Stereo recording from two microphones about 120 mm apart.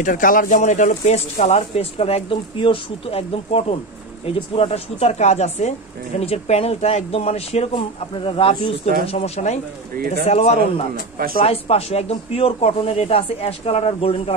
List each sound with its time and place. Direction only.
0.0 s speech: 90° left; by 14.3 s 55° left (ahead or behind)